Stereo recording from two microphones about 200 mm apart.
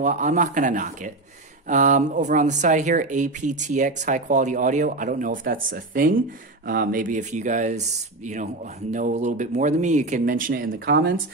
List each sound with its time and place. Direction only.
0.0 s speech: 40° right (ahead or behind)